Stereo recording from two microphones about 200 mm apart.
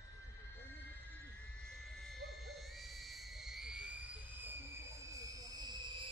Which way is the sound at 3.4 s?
5° right (ahead or behind).